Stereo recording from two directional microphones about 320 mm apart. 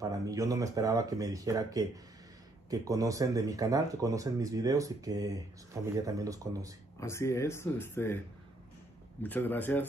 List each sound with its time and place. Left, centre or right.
0.0 s speech: centre
7.0 s speech: centre
9.2 s speech: centre